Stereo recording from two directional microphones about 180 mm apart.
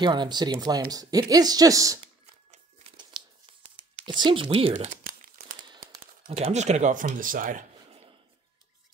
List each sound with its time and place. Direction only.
0.0 s speech: 25° right (ahead or behind)
4.0 s crumpling: 25° right (ahead or behind); by 5.6 s 45° right (ahead or behind)
5.7 s speech: 25° right (ahead or behind); by 7.6 s 50° right (ahead or behind)